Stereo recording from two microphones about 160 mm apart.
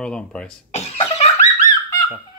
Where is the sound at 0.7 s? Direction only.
40° left (ahead or behind).